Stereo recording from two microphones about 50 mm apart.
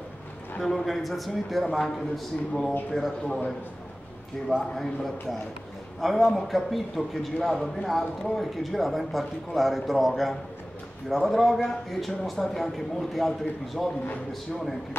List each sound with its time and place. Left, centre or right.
0.6 s a man's voice: centre
4.7 s a man's voice: centre